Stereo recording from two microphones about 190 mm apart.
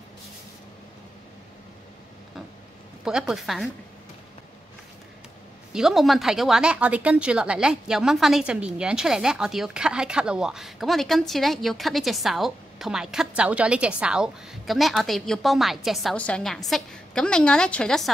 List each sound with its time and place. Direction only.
3.1 s speech: 5° right (ahead or behind)
5.7 s speech: centre (ahead or behind)